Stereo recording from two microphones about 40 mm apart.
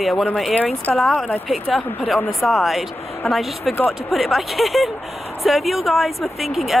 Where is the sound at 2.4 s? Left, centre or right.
Centre.